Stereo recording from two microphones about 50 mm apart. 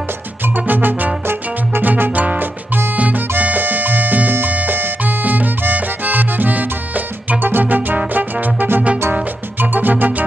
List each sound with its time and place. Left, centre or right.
0.7 s music: right
3.0 s salsa music: right
7.2 s music: right